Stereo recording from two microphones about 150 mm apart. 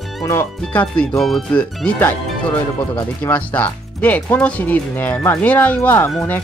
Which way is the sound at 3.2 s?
10° left (ahead or behind).